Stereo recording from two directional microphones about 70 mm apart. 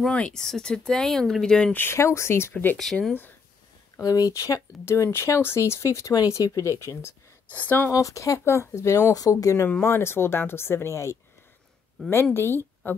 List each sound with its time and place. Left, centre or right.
0.0 s speech: centre
1.7 s speech: left
2.0 s speech: left
2.5 s speech: left
2.8 s speech: centre
4.0 s speech: left
4.8 s speech: left
7.4 s speech: left
7.9 s speech: left
9.1 s speech: left
9.7 s speech: left
12.4 s a woman's voice: left